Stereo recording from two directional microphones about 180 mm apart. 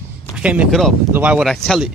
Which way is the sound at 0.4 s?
5° right (ahead or behind).